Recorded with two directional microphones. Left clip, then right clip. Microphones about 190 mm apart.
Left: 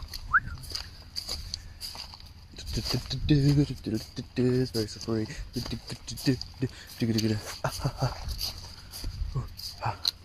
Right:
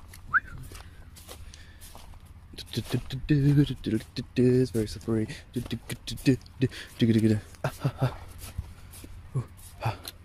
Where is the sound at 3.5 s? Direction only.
30° right (ahead or behind); by 7.3 s 50° right (ahead or behind).